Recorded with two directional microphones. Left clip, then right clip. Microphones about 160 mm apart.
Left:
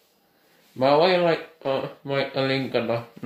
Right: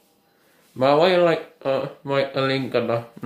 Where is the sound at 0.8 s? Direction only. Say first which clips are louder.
Right 2 dB; 5° right (ahead or behind).